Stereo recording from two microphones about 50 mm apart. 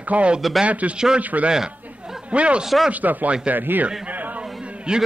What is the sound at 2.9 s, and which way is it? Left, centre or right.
Speech, right.